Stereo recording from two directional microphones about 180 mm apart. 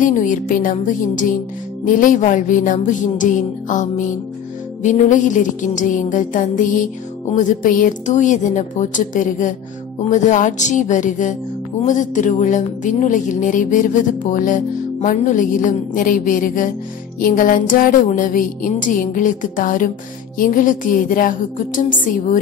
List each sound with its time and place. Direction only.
0.0 s speech: 45° left (ahead or behind)